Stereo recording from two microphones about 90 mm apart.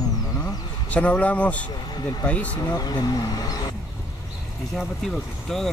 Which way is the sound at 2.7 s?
50° left (ahead or behind).